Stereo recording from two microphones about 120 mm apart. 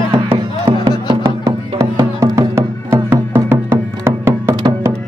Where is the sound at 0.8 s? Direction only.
45° right (ahead or behind).